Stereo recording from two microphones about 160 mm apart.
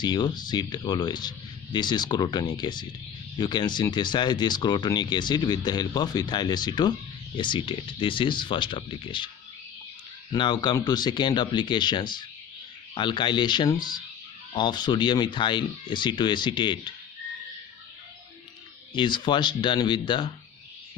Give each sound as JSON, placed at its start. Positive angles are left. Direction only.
{"t": 0.0, "sound": "speech", "side_deg": 25}
{"t": 10.3, "sound": "speech", "side_deg": 30}
{"t": 18.9, "sound": "speech", "side_deg": 30}